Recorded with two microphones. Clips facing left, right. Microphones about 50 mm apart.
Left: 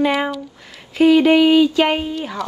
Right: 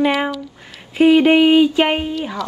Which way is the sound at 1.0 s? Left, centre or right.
Right.